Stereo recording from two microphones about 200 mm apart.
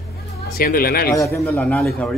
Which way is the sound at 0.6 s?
45° left (ahead or behind).